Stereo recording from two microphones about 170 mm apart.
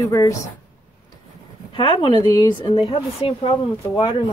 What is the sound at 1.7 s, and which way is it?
A woman's voice, 30° left (ahead or behind).